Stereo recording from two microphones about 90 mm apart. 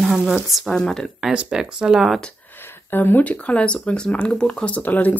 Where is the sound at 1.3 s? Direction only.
10° right (ahead or behind).